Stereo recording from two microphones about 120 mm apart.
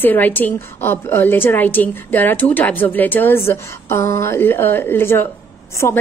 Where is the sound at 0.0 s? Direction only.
15° left (ahead or behind).